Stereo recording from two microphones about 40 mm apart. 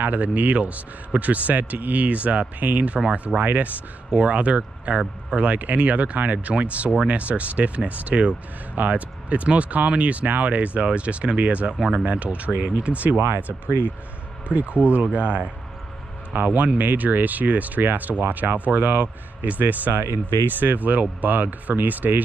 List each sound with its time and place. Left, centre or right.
0.0 s speech: right
14.5 s speech: right